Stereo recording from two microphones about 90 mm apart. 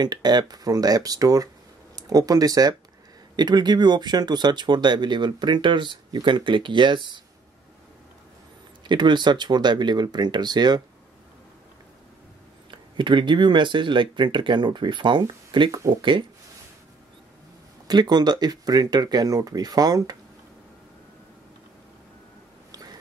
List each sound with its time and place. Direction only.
0.0 s speech: 50° right (ahead or behind)
8.8 s speech: 60° right (ahead or behind)
12.7 s speech: 60° right (ahead or behind)
15.7 s speech: 40° right (ahead or behind)
16.0 s speech: 60° right (ahead or behind)
17.8 s speech: 50° right (ahead or behind)